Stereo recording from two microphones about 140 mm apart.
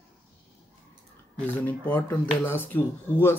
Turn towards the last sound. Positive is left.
turn(degrees=15)  # may be behind; listen again after turning